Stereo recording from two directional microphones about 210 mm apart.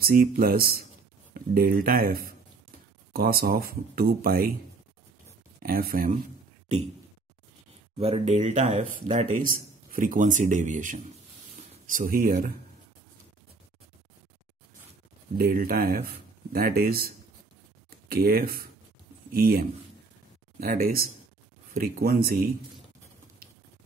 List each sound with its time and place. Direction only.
0.0 s speech: 45° right (ahead or behind)
5.6 s speech: 45° right (ahead or behind)
8.0 s speech: 30° right (ahead or behind)
15.3 s speech: 45° right (ahead or behind)